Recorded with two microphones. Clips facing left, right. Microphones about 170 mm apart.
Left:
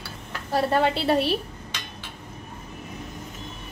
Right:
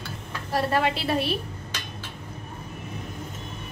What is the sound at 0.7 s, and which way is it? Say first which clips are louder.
Speech: left 4 dB; 30° left (ahead or behind).